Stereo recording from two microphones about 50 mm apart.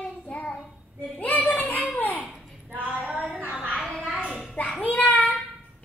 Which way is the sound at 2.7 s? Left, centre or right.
Right.